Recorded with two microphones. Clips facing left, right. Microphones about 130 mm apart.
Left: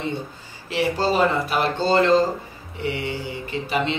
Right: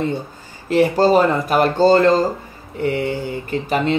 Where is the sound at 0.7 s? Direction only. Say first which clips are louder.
Right 8 dB; 45° right (ahead or behind).